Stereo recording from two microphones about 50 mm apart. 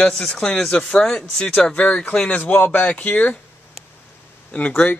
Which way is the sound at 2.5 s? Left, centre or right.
Left.